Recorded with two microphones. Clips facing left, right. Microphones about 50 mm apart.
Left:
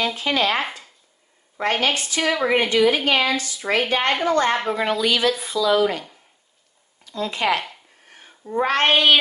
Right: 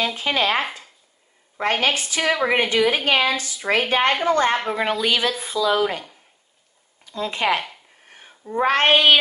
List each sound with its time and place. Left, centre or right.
0.1 s speech: right
1.8 s a woman's voice: centre
7.1 s speech: right
8.6 s a woman's voice: centre